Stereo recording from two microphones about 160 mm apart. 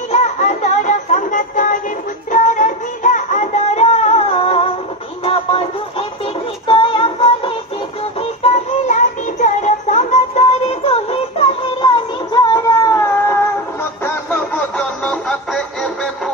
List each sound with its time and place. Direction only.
0.1 s music: 45° left (ahead or behind)
8.8 s music: 50° left (ahead or behind)
11.8 s music: 25° left (ahead or behind)
14.8 s music: 5° left (ahead or behind)